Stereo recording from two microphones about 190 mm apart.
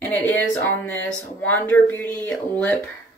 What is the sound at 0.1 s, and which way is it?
Speech, 10° left (ahead or behind).